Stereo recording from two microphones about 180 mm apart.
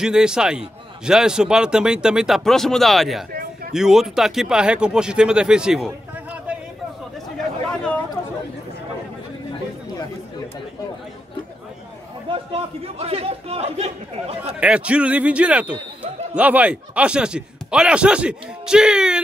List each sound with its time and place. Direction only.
0.0 s a man's voice: 5° right (ahead or behind)
12.3 s a man's voice: 30° right (ahead or behind)
14.6 s a man's voice: 5° right (ahead or behind)